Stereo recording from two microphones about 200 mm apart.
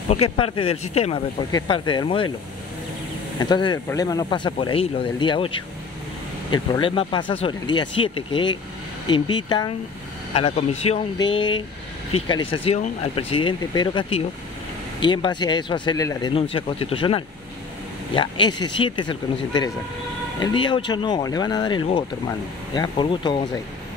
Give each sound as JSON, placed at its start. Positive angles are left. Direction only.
{"t": 0.1, "sound": "speech", "side_deg": 30}
{"t": 3.3, "sound": "speech", "side_deg": 20}